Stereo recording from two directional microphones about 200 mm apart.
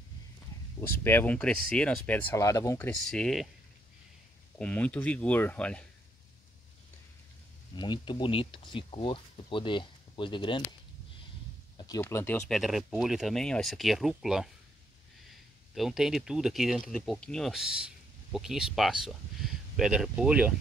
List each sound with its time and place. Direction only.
0.7 s speech: 10° left (ahead or behind)
3.1 s speech: centre (ahead or behind)
4.6 s speech: 5° left (ahead or behind)
7.7 s speech: 20° left (ahead or behind)
11.8 s speech: 15° left (ahead or behind); by 20.5 s 5° right (ahead or behind)